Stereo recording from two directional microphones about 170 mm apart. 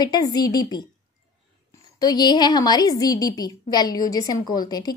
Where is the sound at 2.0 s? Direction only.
25° left (ahead or behind).